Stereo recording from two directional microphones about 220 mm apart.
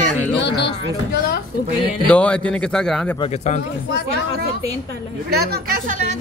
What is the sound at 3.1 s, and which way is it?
Speech, 30° left (ahead or behind).